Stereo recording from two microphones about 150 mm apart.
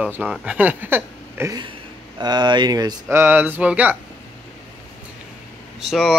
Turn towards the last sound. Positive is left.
turn(degrees=0)  # may be behind; listen again after turning